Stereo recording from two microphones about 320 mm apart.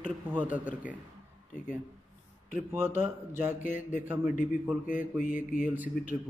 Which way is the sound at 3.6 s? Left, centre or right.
Left.